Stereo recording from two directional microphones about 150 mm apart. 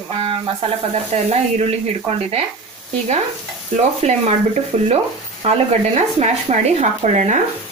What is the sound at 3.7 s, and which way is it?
Speech, 50° right (ahead or behind).